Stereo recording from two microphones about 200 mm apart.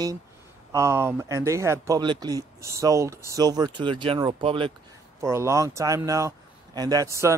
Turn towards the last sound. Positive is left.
turn(degrees=-15)  # may be behind; listen again after turning